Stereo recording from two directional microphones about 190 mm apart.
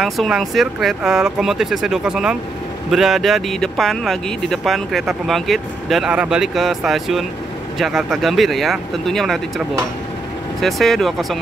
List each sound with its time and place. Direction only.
0.0 s speech: centre (ahead or behind)
10.6 s speech: centre (ahead or behind)